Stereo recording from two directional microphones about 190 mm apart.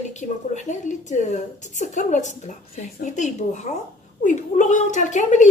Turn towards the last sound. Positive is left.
turn(degrees=40)  # may be behind; listen again after turning